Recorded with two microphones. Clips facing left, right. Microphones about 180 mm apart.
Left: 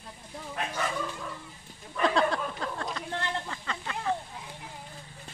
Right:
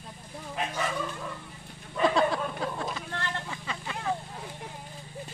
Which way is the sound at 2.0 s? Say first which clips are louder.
Right 1 dB; 5° right (ahead or behind).